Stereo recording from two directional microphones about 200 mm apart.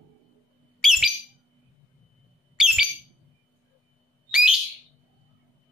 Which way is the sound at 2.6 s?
5° right (ahead or behind).